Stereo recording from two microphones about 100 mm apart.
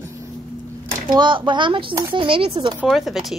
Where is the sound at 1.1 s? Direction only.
55° right (ahead or behind).